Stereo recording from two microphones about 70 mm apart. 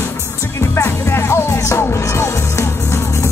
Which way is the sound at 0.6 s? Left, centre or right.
Left.